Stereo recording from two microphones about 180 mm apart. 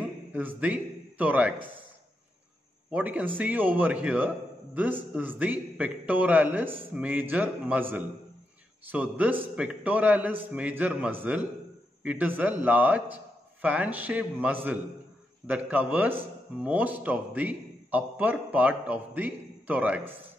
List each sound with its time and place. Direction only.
0.3 s speech: 10° right (ahead or behind)
2.9 s a man's voice: 10° right (ahead or behind)